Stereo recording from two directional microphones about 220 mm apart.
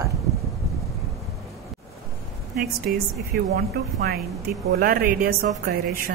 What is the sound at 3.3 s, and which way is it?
Speech, 45° right (ahead or behind).